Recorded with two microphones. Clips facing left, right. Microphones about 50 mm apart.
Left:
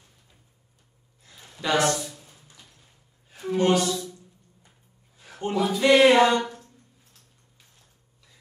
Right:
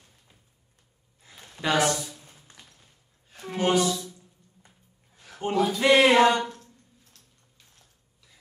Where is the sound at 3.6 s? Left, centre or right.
Centre.